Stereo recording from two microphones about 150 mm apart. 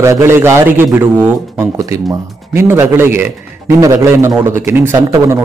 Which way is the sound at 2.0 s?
15° right (ahead or behind).